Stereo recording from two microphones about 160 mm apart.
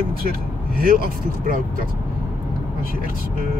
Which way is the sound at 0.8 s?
65° right (ahead or behind).